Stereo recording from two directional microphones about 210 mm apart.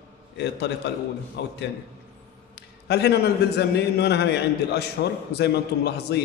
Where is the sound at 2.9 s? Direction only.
50° left (ahead or behind).